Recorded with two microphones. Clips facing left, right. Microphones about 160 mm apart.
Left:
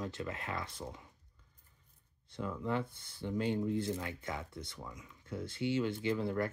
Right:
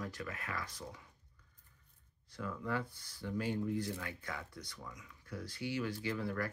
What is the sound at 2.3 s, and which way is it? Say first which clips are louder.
Speech: left 3 dB; 25° left (ahead or behind).